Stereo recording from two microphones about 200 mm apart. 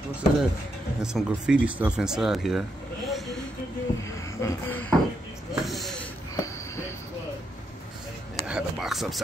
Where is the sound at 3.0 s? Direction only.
Centre (ahead or behind).